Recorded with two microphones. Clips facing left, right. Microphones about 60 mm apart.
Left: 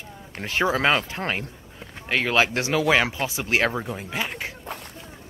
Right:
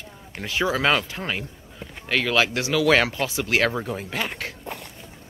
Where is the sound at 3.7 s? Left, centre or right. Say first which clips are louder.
Right 1 dB; centre.